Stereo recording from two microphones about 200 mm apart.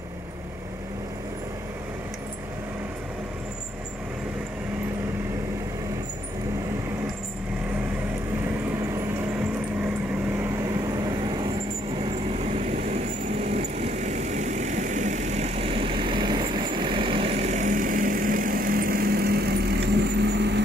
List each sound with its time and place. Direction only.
12.5 s vehicle: 35° right (ahead or behind); by 20.6 s 60° right (ahead or behind)